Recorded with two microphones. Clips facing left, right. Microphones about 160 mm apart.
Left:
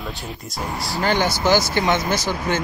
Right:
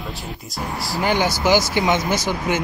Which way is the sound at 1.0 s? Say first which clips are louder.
Even; 15° right (ahead or behind).